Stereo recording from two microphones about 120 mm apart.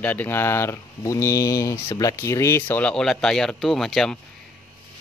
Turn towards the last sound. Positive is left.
turn(degrees=5)  # may be behind; listen again after turning